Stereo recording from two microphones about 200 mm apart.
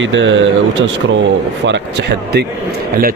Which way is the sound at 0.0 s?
70° right (ahead or behind).